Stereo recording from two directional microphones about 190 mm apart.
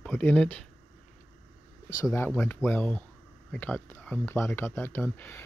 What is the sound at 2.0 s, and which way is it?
Speech, 10° left (ahead or behind).